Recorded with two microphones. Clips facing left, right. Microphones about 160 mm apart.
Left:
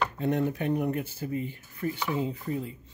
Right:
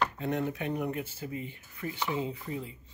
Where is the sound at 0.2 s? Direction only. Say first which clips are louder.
Left 4 dB; 40° left (ahead or behind).